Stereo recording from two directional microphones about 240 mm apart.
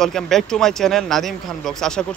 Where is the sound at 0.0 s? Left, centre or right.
Centre.